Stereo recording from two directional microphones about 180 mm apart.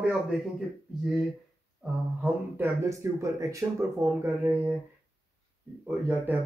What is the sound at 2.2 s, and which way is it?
Speech, 15° right (ahead or behind).